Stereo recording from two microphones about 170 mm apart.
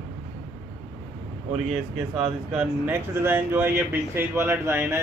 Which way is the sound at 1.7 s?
35° right (ahead or behind).